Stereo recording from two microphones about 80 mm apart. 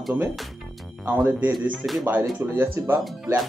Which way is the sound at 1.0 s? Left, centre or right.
Right.